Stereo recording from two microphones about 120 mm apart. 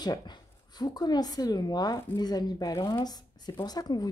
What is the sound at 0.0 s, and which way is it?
Speech, 35° left (ahead or behind).